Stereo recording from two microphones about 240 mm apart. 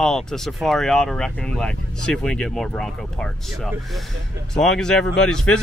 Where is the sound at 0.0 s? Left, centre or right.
Centre.